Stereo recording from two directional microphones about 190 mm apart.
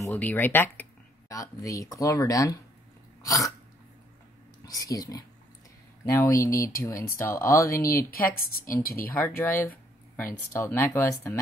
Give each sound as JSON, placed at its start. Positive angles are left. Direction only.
{"t": 0.0, "sound": "speech", "side_deg": 10}
{"t": 3.2, "sound": "sneeze", "side_deg": 15}
{"t": 4.6, "sound": "speech", "side_deg": 20}
{"t": 6.0, "sound": "speech", "side_deg": 15}
{"t": 8.1, "sound": "a woman's voice", "side_deg": 50}
{"t": 10.1, "sound": "speech", "side_deg": 15}